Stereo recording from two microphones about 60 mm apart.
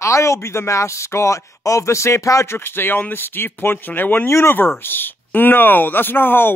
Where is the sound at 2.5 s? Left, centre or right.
Left.